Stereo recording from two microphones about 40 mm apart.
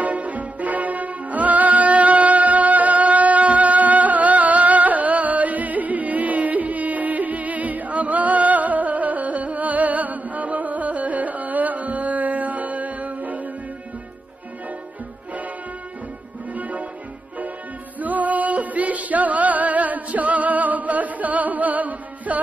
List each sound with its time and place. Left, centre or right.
0.0 s music: right
16.5 s music: right
17.9 s music: right